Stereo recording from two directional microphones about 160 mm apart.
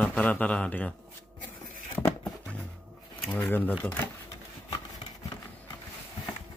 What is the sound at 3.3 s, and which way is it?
Speech, 10° left (ahead or behind).